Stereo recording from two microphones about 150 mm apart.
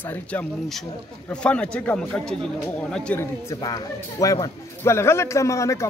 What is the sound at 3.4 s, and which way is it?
Speech, 25° left (ahead or behind).